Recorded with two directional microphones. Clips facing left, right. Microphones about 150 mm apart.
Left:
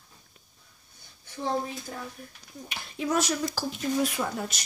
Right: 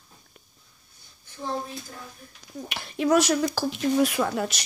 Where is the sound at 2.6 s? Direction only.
70° right (ahead or behind).